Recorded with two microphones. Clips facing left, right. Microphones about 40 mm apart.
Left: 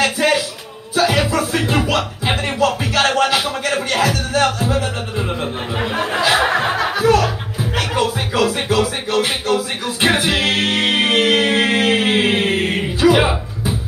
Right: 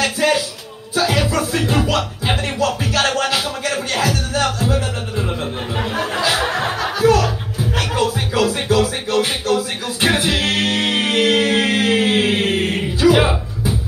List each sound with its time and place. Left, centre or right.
0.0 s a sound: left
0.9 s music: left
5.8 s music: centre